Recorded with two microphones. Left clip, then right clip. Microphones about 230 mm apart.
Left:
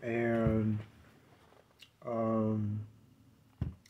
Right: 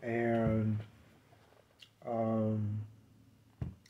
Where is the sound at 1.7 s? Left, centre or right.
Centre.